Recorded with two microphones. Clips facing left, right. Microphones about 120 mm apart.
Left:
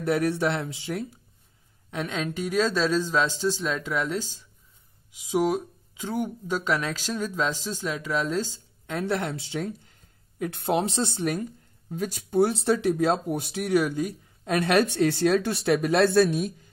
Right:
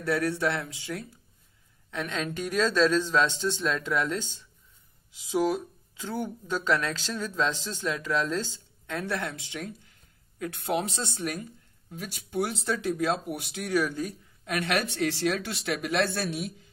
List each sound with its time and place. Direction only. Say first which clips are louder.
0.0 s speech: left 3 dB; 20° left (ahead or behind)
1.9 s speech: left 2 dB; 10° left (ahead or behind)
5.9 s speech: left 4 dB; 15° left (ahead or behind)
8.8 s speech: left 4 dB; 20° left (ahead or behind)
14.4 s speech: left 7 dB; 30° left (ahead or behind)